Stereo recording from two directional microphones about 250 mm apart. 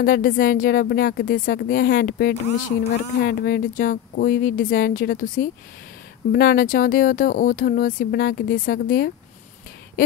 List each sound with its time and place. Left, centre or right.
0.0 s speech: left